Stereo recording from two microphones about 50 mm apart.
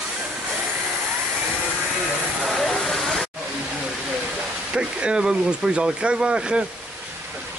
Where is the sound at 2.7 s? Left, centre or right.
Centre.